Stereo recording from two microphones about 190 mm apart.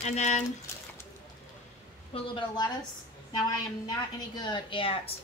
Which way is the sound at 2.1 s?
25° left (ahead or behind).